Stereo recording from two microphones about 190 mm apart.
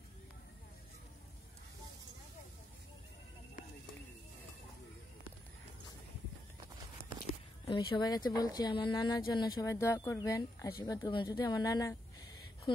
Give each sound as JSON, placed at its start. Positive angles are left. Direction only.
{"t": 7.6, "sound": "speech", "side_deg": 25}